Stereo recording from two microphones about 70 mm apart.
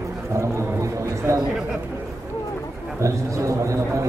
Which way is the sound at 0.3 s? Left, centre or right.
Right.